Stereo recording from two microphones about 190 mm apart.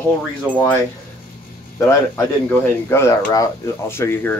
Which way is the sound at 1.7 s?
15° left (ahead or behind).